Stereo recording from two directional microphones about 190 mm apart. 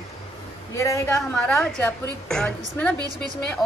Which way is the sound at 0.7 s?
15° left (ahead or behind).